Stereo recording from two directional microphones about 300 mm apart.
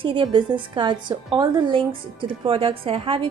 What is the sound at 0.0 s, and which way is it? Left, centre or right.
A woman's voice, centre.